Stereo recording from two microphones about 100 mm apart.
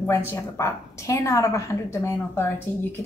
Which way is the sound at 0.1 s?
30° left (ahead or behind).